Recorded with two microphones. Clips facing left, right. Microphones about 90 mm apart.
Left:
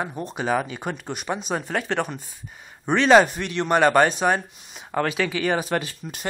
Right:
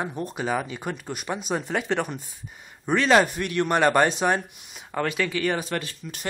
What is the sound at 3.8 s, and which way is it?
A woman's voice, 5° left (ahead or behind).